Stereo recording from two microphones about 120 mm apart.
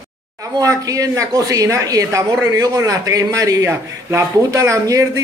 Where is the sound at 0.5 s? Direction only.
30° right (ahead or behind).